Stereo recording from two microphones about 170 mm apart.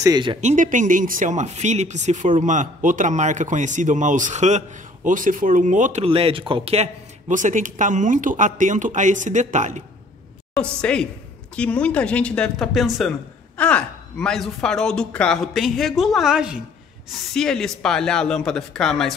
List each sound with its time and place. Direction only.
0.0 s speech: 25° right (ahead or behind)
0.4 s speech: 45° right (ahead or behind)
6.0 s speech: 35° right (ahead or behind)
10.5 s a man's voice: 5° left (ahead or behind)